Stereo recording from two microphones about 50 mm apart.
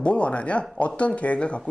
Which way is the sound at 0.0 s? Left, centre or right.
Left.